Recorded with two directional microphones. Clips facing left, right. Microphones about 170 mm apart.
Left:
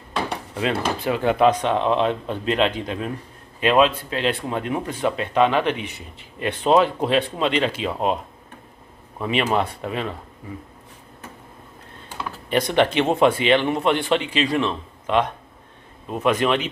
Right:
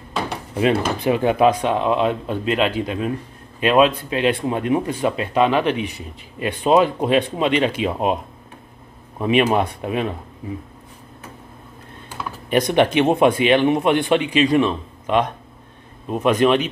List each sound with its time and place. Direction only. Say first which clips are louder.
0.6 s speech: right 5 dB; 20° right (ahead or behind)
9.2 s speech: right 4 dB; 15° right (ahead or behind)
12.2 s speech: right 3 dB; 15° right (ahead or behind)